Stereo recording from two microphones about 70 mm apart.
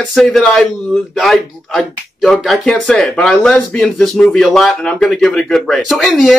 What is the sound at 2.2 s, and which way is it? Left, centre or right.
Speech, centre.